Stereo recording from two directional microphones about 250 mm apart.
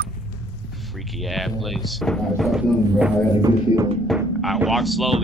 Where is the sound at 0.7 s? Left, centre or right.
Centre.